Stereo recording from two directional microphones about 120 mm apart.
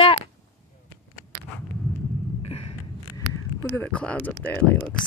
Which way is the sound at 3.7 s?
10° left (ahead or behind).